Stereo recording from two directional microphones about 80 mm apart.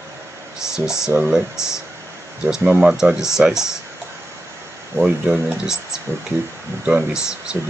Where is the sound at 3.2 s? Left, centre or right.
Centre.